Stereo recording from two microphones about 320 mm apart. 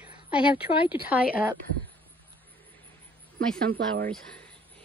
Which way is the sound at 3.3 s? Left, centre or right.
Right.